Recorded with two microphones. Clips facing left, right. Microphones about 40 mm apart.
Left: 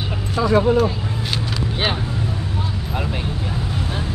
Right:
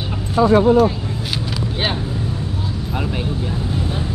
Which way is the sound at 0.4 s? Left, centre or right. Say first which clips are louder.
Right 4 dB; right.